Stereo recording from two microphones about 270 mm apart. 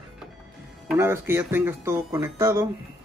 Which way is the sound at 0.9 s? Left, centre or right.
Centre.